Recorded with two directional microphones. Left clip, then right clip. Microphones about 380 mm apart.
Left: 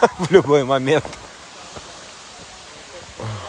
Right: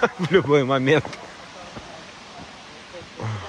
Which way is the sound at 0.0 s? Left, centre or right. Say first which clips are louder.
Left 5 dB; centre.